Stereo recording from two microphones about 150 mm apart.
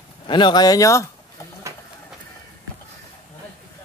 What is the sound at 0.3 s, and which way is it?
Speech, 30° left (ahead or behind).